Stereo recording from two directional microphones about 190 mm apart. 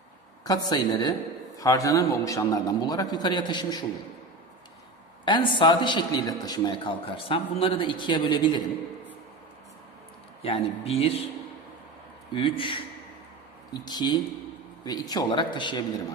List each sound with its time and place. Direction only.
0.4 s a man's voice: 20° left (ahead or behind)
5.2 s a man's voice: 25° left (ahead or behind)
10.4 s speech: 30° left (ahead or behind)
12.3 s a man's voice: 25° left (ahead or behind)
13.8 s a man's voice: 20° left (ahead or behind)